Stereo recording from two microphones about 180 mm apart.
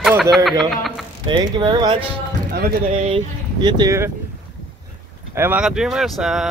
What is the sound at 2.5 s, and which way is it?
Speech, 55° right (ahead or behind).